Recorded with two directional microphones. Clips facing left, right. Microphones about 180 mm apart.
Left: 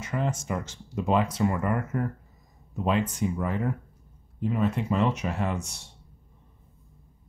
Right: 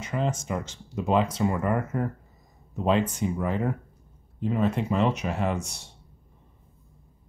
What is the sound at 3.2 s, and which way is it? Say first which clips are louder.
Speech: even; 25° right (ahead or behind).